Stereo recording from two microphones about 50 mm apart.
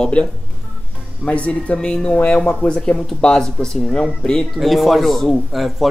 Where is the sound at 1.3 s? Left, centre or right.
Left.